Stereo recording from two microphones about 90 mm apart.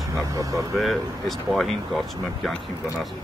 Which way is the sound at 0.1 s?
40° right (ahead or behind).